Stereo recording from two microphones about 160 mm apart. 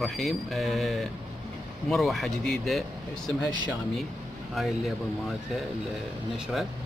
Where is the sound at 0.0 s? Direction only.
Centre (ahead or behind).